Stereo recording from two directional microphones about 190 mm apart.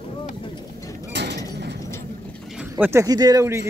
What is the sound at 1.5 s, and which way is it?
Vehicle, 65° right (ahead or behind).